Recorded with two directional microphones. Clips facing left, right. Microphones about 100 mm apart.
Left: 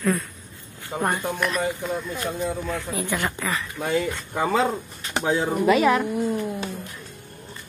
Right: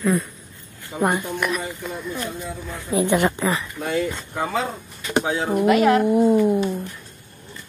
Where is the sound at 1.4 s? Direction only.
10° right (ahead or behind).